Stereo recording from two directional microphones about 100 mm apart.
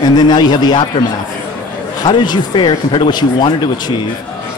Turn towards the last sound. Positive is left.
turn(degrees=45)  # may be behind; listen again after turning